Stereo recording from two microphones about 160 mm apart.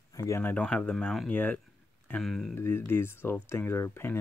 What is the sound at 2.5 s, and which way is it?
Speech, 15° left (ahead or behind).